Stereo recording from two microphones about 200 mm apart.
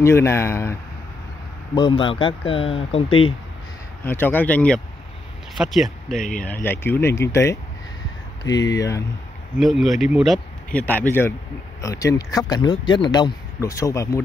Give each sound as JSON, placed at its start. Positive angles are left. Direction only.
{"t": 0.0, "sound": "speech", "side_deg": 15}
{"t": 1.8, "sound": "speech", "side_deg": 25}
{"t": 4.0, "sound": "speech", "side_deg": 10}
{"t": 9.6, "sound": "speech", "side_deg": 0}